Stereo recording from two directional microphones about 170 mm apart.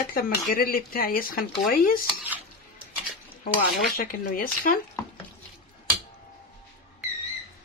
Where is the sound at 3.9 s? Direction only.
55° left (ahead or behind).